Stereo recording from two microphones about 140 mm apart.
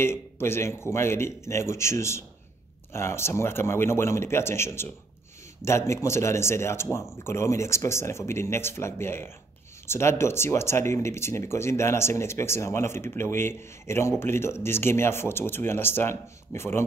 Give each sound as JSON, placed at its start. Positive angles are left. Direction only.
{"t": 0.0, "sound": "a man's voice", "side_deg": 15}